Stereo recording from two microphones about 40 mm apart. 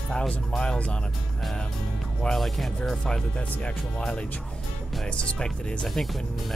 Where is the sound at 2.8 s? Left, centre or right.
Centre.